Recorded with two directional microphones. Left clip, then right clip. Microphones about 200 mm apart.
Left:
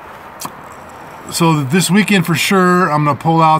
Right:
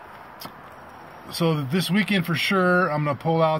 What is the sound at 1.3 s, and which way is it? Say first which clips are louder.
Speech: left 10 dB; centre (ahead or behind).